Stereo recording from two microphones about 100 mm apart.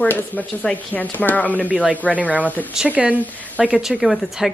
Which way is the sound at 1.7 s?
15° right (ahead or behind).